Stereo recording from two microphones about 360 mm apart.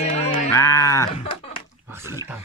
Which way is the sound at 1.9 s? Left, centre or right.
Centre.